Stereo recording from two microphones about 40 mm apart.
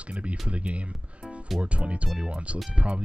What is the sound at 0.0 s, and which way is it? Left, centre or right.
Speech, right.